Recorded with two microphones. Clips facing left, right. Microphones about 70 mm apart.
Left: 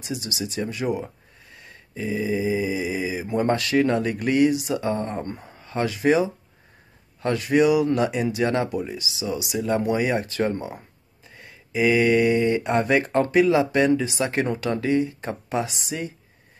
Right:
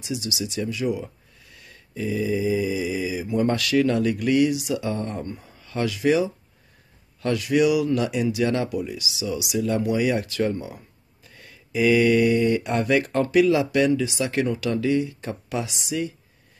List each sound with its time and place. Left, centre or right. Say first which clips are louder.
0.0 s speech: right 1 dB; left
1.5 s mantra: left 1 dB; left
3.3 s speech: even; left
5.2 s speech: left 1 dB; left
11.2 s speech: left 2 dB; left